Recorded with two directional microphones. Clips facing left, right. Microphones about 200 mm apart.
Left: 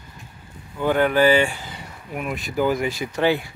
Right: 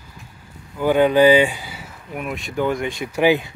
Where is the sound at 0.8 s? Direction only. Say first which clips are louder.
Right 4 dB; 15° right (ahead or behind); by 3.1 s centre (ahead or behind).